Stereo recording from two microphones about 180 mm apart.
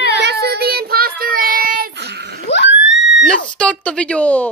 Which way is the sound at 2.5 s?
75° left (ahead or behind).